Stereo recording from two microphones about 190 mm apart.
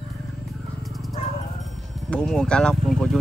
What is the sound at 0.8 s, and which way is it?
Roaring cats, centre (ahead or behind).